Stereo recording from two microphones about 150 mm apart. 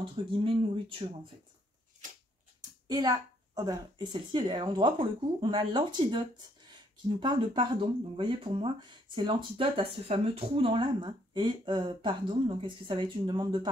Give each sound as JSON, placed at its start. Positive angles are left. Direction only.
{"t": 0.0, "sound": "speech", "side_deg": -35}
{"t": 2.9, "sound": "speech", "side_deg": -25}